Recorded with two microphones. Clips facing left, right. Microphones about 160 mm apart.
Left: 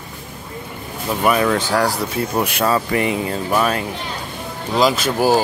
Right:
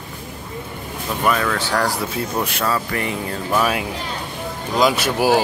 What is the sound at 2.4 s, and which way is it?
Speech, 20° left (ahead or behind).